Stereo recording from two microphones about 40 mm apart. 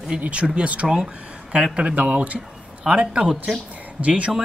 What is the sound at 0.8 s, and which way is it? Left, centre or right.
Speech, centre.